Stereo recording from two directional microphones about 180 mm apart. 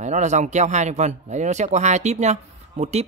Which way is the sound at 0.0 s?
40° right (ahead or behind).